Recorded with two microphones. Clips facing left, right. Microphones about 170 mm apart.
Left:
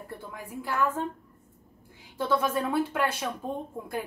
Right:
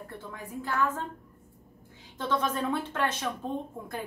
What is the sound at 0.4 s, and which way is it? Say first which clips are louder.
Speech: left 1 dB; 10° left (ahead or behind).